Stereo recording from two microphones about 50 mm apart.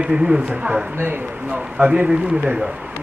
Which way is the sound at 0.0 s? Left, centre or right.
Right.